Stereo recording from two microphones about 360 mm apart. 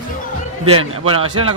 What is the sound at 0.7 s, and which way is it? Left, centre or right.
Speech, right.